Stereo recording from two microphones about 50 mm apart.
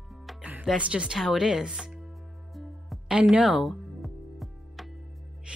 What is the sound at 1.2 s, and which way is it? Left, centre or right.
Speech, centre.